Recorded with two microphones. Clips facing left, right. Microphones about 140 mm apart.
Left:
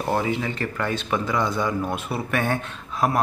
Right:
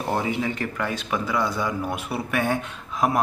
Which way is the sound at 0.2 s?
15° right (ahead or behind).